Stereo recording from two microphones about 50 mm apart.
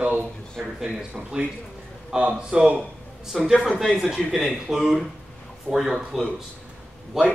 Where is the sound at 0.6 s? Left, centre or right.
Centre.